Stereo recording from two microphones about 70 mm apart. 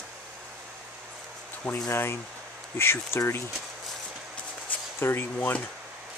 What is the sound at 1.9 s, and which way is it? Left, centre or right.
Speech, left.